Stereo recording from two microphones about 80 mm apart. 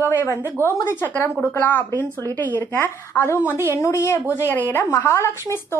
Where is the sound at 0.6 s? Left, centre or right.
Left.